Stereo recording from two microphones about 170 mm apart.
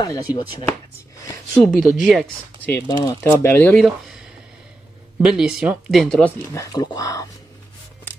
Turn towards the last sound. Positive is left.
turn(degrees=20)  # may be behind; listen again after turning